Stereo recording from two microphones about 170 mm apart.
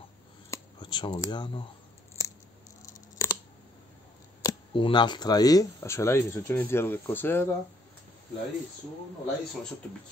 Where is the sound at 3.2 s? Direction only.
15° left (ahead or behind).